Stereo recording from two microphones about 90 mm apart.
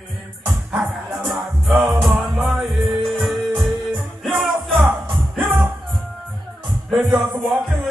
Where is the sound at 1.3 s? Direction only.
25° right (ahead or behind).